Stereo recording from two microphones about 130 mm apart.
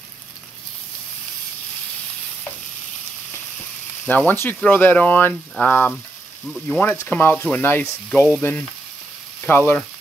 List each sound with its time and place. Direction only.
4.1 s speech: 15° left (ahead or behind)
6.4 s sizzle: centre (ahead or behind)
6.8 s speech: 15° left (ahead or behind)
9.4 s frying: 15° left (ahead or behind)